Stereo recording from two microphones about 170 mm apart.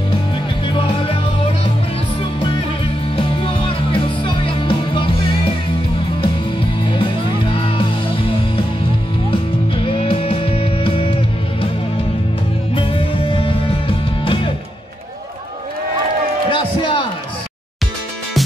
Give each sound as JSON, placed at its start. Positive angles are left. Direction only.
{"t": 0.7, "sound": "music", "side_deg": 30}
{"t": 7.5, "sound": "music", "side_deg": 30}
{"t": 12.7, "sound": "music", "side_deg": 30}
{"t": 16.4, "sound": "a sound", "side_deg": 30}